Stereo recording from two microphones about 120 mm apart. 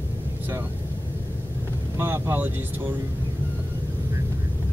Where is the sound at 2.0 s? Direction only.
20° right (ahead or behind).